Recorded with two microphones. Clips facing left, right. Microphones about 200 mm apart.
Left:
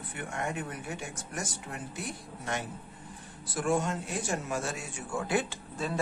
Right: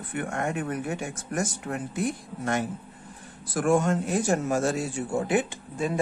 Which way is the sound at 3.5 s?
50° right (ahead or behind).